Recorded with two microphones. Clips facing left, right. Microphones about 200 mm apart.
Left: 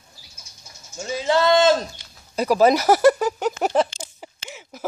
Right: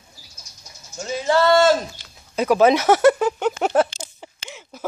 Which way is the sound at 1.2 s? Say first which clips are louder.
Right 1 dB; 15° left (ahead or behind).